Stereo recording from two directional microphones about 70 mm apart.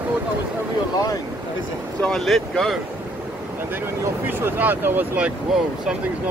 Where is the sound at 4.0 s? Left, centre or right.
Right.